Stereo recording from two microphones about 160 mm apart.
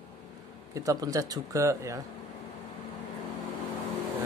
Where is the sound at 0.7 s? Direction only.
20° right (ahead or behind).